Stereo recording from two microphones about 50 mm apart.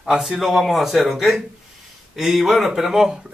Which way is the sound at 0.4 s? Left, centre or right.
Centre.